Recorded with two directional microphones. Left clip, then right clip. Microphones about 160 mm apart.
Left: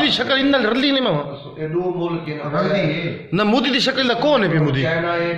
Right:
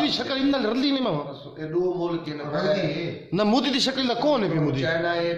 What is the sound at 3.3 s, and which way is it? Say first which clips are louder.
A man's voice: left 5 dB; 25° right (ahead or behind).